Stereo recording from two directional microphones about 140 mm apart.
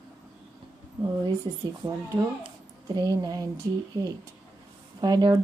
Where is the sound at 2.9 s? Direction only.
25° right (ahead or behind).